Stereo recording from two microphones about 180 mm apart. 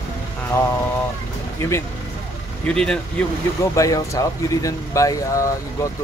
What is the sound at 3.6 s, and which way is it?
Speech, 20° left (ahead or behind).